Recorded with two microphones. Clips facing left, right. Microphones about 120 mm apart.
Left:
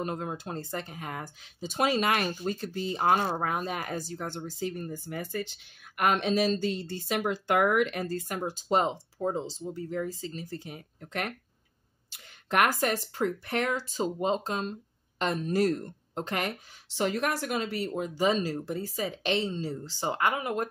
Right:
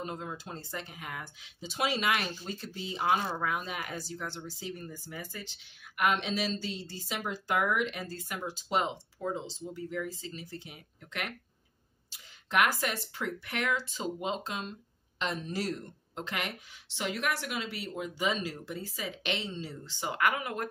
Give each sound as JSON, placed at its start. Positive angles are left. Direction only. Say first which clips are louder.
{"t": 0.0, "sound": "speech", "louder": "left 5 dB", "side_deg": 55}